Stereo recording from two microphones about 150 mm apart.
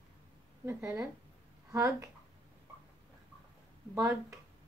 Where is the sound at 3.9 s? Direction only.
20° right (ahead or behind).